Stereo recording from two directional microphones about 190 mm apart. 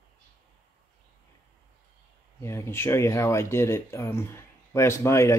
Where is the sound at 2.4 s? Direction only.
15° left (ahead or behind).